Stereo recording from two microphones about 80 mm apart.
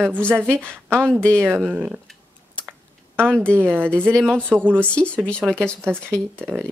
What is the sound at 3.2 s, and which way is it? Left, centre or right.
Speech, centre.